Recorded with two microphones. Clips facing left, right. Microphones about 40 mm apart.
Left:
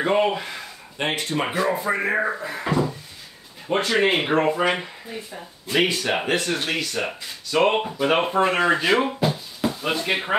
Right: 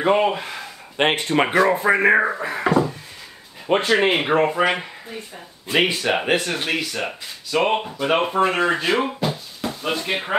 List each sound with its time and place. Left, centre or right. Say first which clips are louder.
0.0 s speech: right 2 dB; centre
0.9 s speech: right 6 dB; right
3.7 s speech: right 3 dB; right
4.1 s speech: right 2 dB; centre